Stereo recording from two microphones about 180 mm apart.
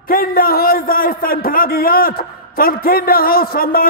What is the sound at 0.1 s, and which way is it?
A man's voice, 55° left (ahead or behind).